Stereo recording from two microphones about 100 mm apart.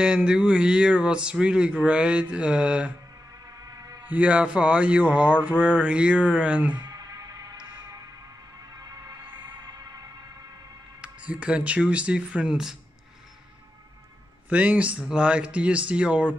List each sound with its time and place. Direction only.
0.0 s speech: 10° right (ahead or behind)
3.6 s music: 35° right (ahead or behind)
4.0 s speech: 15° right (ahead or behind)
6.9 s music: 40° right (ahead or behind)
9.4 s a sound: 45° right (ahead or behind)
11.0 s speech: 10° right (ahead or behind)
14.5 s speech: 15° right (ahead or behind)